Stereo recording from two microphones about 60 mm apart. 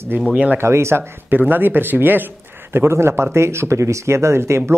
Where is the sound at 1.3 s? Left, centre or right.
Right.